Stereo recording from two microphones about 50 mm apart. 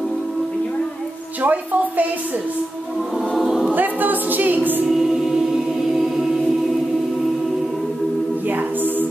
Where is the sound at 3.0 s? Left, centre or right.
Centre.